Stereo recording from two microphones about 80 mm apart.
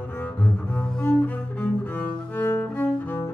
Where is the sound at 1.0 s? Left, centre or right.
Left.